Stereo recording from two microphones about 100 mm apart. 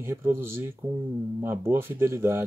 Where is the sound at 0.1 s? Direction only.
25° right (ahead or behind).